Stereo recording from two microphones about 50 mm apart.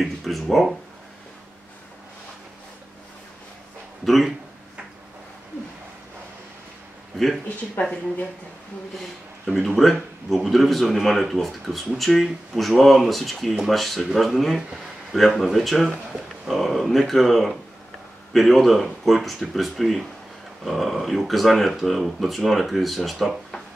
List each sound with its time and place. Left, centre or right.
0.0 s a sound: centre
4.0 s speech: centre
7.1 s speech: centre
7.8 s speech: left
9.8 s speech: centre